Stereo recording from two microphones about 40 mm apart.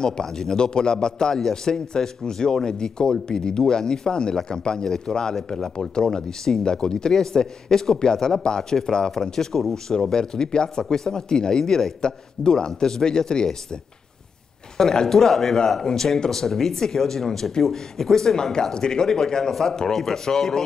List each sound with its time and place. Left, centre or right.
0.0 s a man's voice: centre
9.9 s a man's voice: centre
14.8 s a man's voice: centre